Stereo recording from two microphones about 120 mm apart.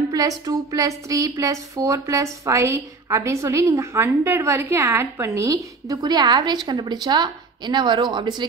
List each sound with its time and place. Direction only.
0.1 s a woman's voice: 30° right (ahead or behind)